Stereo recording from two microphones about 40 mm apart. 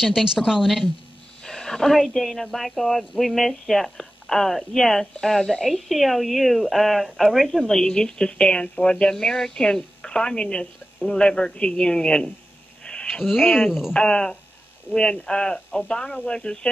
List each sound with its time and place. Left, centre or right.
0.0 s a woman's voice: centre
1.4 s speech: centre
5.7 s speech: centre; by 9.1 s left
9.1 s speech: centre
12.8 s a sound: left
13.1 s a woman's voice: centre
13.9 s speech: left